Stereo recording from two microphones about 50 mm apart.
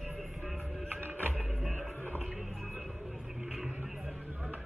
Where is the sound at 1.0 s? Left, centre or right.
Right.